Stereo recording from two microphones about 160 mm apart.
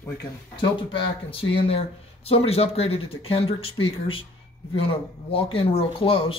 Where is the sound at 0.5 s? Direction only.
30° left (ahead or behind).